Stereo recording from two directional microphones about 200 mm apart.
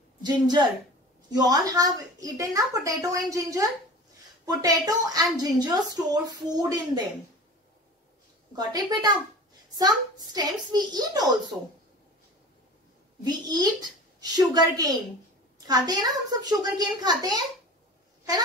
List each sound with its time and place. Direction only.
0.2 s a woman's voice: 20° right (ahead or behind)
8.5 s a woman's voice: 20° right (ahead or behind)
13.2 s a woman's voice: 20° right (ahead or behind)